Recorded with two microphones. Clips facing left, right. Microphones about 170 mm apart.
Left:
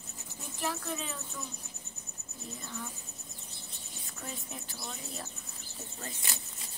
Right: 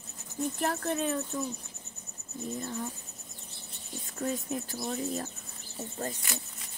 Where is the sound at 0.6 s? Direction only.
55° right (ahead or behind).